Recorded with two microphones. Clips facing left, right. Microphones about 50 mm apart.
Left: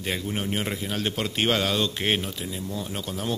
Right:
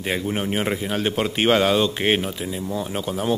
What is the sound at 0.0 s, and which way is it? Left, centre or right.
Speech, centre.